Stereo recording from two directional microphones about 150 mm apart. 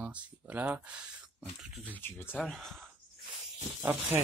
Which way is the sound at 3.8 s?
15° right (ahead or behind).